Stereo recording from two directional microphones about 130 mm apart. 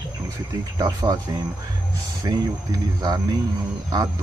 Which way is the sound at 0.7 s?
30° right (ahead or behind).